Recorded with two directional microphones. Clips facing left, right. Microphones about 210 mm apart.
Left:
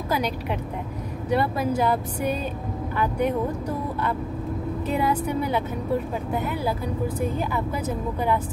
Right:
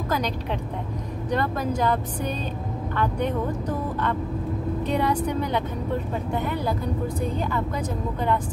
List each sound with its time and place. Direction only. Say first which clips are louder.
1.3 s speech: left 2 dB; 10° left (ahead or behind)